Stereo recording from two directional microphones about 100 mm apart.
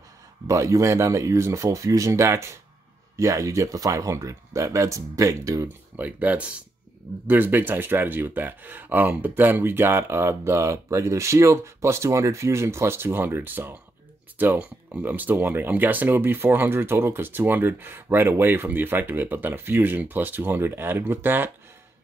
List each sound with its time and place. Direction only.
0.5 s speech: 30° right (ahead or behind)
5.7 s speech: 15° right (ahead or behind)